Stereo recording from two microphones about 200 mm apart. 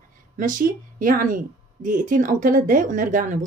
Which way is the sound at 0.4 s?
45° right (ahead or behind).